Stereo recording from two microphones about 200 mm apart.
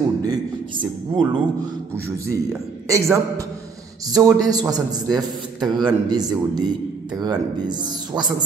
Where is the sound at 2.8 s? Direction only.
15° right (ahead or behind).